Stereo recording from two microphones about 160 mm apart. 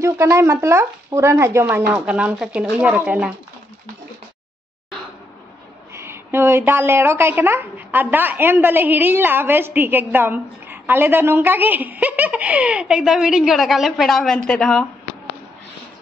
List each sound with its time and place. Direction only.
0.0 s a woman's voice: 15° right (ahead or behind)
5.9 s a woman's voice: 15° right (ahead or behind); by 14.9 s centre (ahead or behind)